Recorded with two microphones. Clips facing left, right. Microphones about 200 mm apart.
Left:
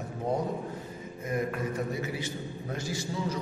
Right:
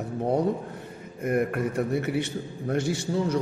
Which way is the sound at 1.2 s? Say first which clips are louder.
Right 6 dB; 65° right (ahead or behind).